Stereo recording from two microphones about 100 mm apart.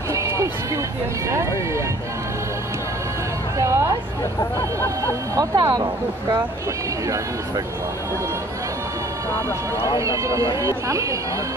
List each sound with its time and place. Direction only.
0.1 s music: 30° right (ahead or behind)
3.5 s speech: 30° right (ahead or behind)
4.4 s speech: 30° left (ahead or behind)
5.3 s speech: 40° right (ahead or behind)
9.9 s speech: 30° right (ahead or behind)